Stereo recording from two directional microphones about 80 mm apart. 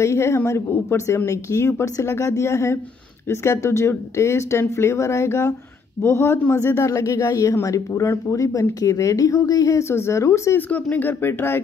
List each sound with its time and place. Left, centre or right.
0.0 s speech: left
10.7 s speech: left